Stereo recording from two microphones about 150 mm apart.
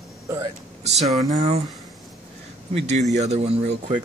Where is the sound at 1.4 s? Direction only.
45° right (ahead or behind).